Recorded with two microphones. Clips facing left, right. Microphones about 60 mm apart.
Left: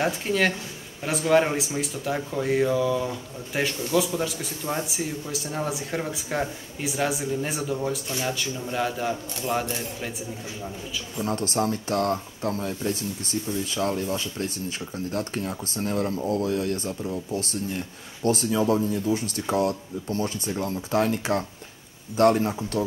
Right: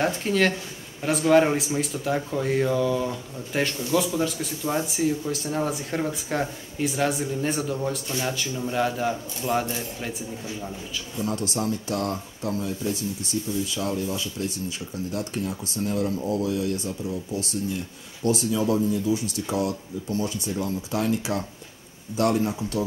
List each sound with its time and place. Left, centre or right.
0.0 s speech: centre
11.2 s speech: left
18.2 s speech: left